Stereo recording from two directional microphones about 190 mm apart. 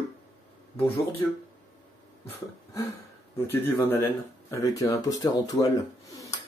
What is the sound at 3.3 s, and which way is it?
Speech, 15° left (ahead or behind).